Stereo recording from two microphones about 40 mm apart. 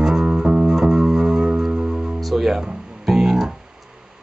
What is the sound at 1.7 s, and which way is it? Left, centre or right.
Music, right.